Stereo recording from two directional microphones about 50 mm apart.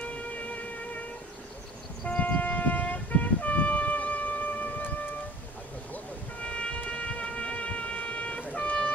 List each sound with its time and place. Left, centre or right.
0.0 s music: left
2.0 s music: left
6.4 s music: centre